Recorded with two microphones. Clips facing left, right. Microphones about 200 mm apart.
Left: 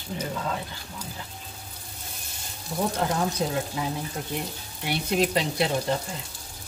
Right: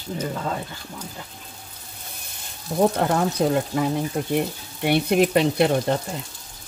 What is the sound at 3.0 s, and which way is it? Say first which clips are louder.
Speech: right 5 dB; 60° right (ahead or behind).